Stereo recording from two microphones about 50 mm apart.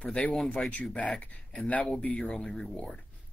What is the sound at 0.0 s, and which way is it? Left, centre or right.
Speech, left.